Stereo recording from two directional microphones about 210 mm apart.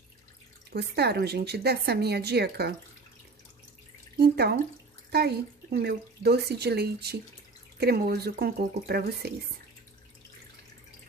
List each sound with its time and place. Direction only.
0.7 s speech: 50° right (ahead or behind)
4.2 s speech: 50° right (ahead or behind)